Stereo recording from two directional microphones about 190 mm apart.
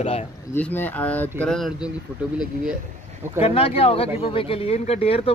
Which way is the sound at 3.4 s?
30° left (ahead or behind).